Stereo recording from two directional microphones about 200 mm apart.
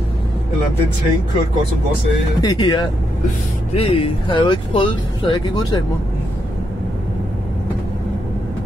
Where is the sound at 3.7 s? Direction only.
30° left (ahead or behind).